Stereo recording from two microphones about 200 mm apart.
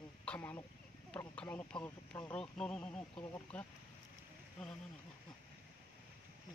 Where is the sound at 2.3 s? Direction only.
5° left (ahead or behind).